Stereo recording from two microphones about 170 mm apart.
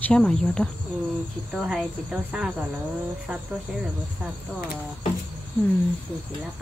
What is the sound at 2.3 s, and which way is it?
Speech, 5° right (ahead or behind).